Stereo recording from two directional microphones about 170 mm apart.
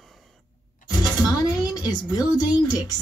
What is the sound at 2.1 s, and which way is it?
Speech, 25° left (ahead or behind).